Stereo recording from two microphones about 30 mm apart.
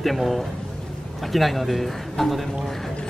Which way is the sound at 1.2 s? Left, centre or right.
Centre.